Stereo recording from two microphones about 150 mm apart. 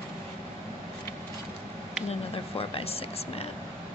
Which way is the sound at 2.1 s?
40° left (ahead or behind).